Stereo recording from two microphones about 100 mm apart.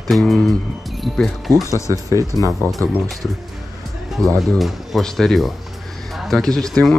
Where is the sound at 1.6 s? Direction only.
30° left (ahead or behind).